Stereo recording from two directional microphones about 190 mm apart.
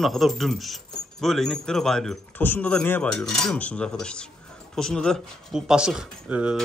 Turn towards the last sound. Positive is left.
turn(degrees=-5)  # may be behind; listen again after turning